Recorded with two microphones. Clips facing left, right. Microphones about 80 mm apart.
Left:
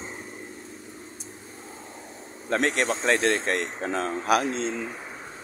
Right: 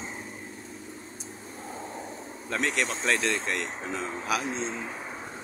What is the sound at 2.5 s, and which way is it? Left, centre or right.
Speech, left.